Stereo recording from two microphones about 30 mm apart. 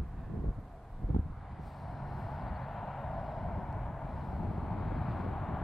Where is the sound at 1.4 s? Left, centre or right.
Centre.